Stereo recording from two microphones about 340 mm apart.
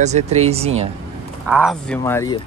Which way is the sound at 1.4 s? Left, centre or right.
Centre.